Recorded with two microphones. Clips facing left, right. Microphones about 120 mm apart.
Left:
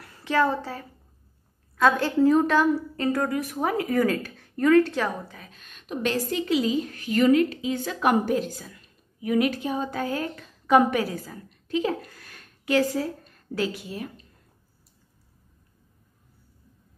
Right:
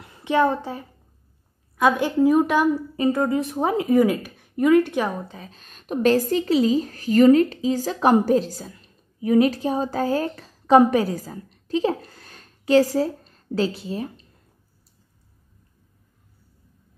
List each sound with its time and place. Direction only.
0.0 s a woman's voice: 20° right (ahead or behind)